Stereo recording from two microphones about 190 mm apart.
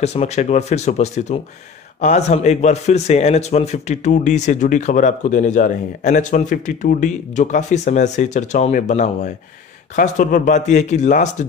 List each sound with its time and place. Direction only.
0.0 s a man's voice: 35° left (ahead or behind)